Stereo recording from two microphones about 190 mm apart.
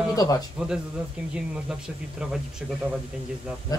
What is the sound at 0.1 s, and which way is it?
Speech, 20° left (ahead or behind).